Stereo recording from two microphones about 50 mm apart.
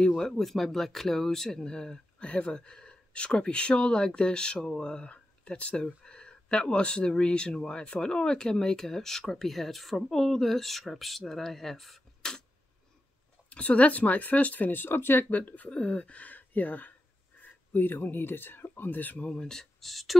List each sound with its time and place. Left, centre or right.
0.2 s speech: centre
12.2 s a sound: centre
13.5 s speech: left
19.2 s speech: centre